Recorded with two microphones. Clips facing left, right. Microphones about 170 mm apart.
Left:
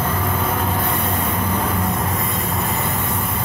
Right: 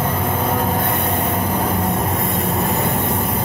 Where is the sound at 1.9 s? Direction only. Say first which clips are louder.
Right 3 dB; 35° right (ahead or behind).